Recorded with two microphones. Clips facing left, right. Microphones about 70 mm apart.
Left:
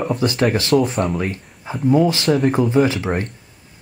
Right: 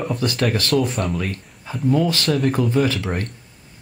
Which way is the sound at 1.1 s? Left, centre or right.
Centre.